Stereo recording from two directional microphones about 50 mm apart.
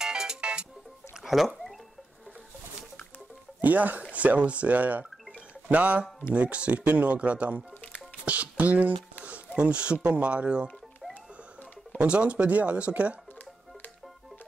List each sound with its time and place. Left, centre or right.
0.0 s music: centre
1.2 s a sound: centre
3.6 s speech: right
8.3 s a sound: right
10.0 s speech: right
12.0 s speech: right